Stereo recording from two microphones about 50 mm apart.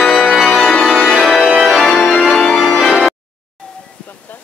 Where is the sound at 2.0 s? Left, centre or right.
Centre.